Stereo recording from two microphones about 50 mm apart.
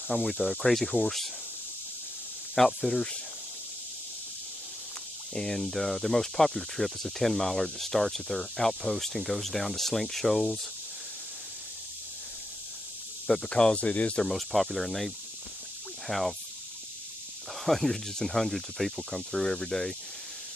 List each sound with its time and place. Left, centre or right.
0.1 s speech: centre
2.5 s speech: centre
5.3 s speech: centre
13.5 s speech: centre
13.7 s speech: left
14.3 s speech: centre
17.6 s speech: centre